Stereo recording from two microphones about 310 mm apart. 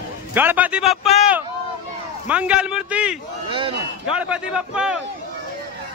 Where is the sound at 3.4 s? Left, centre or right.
Centre.